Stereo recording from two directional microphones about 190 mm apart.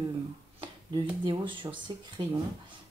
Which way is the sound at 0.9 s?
25° right (ahead or behind).